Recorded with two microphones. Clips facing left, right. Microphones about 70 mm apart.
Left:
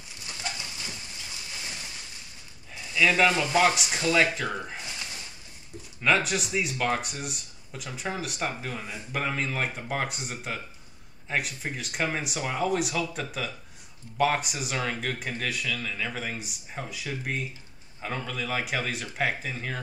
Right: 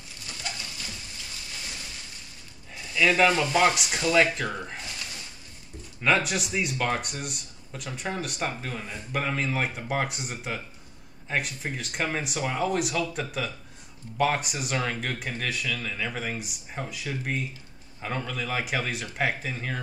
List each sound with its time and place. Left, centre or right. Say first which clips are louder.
2.9 s speech: right 1 dB; centre
6.0 s speech: even; centre